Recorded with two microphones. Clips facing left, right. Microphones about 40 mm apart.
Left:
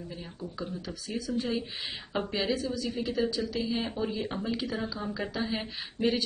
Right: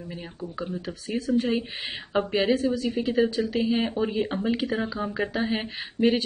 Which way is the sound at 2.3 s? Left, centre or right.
Right.